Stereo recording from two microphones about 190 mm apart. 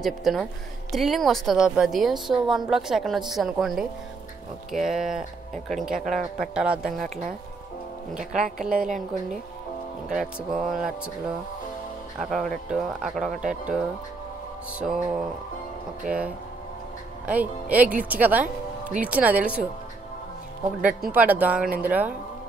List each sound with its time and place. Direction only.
0.0 s speech: centre (ahead or behind)
8.5 s a woman's voice: 45° right (ahead or behind)
10.0 s speech: centre (ahead or behind)
21.1 s speech: 10° right (ahead or behind)